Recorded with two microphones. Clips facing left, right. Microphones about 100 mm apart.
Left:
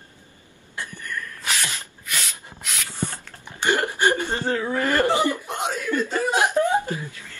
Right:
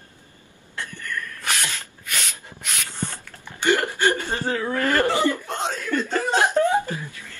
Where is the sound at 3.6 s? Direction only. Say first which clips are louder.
Right 1 dB; 20° left (ahead or behind).